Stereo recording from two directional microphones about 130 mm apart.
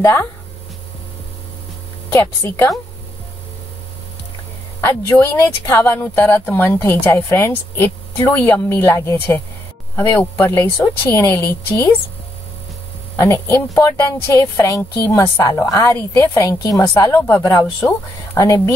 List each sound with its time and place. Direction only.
0.0 s speech: 20° left (ahead or behind)
2.1 s speech: 20° left (ahead or behind)
4.8 s speech: 20° left (ahead or behind)
13.1 s speech: 20° left (ahead or behind)